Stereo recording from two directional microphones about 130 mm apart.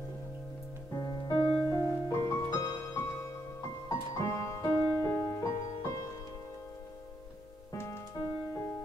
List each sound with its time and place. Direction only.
0.9 s music: 30° left (ahead or behind)
4.1 s music: 25° left (ahead or behind)
7.7 s music: 20° left (ahead or behind)